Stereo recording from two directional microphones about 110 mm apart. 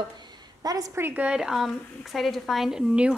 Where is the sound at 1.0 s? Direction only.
20° right (ahead or behind).